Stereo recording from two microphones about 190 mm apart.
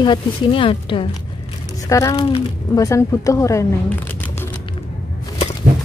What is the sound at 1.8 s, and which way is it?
Speech, 15° left (ahead or behind).